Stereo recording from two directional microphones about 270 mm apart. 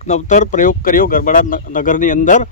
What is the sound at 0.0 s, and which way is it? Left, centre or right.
Speech, left.